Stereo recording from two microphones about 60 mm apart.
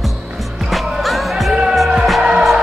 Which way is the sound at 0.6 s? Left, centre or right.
Centre.